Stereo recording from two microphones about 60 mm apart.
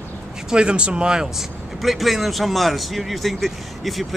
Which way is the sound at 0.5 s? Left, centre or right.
Centre.